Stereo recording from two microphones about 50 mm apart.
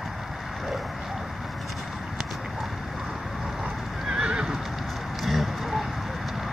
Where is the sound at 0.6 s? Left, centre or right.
Centre.